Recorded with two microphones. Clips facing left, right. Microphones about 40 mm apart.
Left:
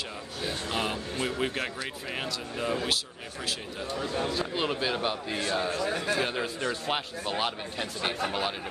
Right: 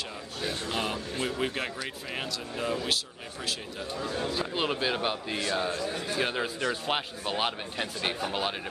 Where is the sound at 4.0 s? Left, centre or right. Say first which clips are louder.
Left 1 dB; left.